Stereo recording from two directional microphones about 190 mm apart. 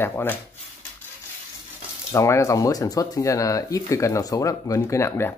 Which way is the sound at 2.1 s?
15° left (ahead or behind).